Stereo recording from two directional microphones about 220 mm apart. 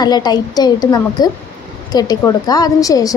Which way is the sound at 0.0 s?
20° left (ahead or behind).